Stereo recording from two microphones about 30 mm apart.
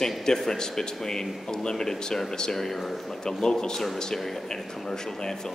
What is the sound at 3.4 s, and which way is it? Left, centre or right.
Speech, left.